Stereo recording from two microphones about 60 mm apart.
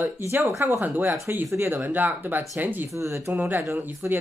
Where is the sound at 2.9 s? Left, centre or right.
Right.